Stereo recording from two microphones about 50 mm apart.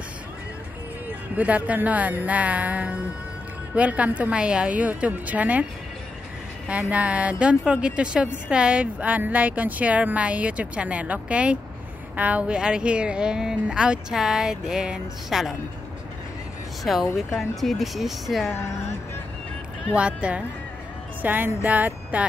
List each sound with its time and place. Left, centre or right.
1.3 s a woman's voice: right
4.3 s a woman's voice: centre
6.9 s a woman's voice: right; by 15.5 s centre
16.8 s speech: centre
20.0 s a woman's voice: right
21.2 s speech: right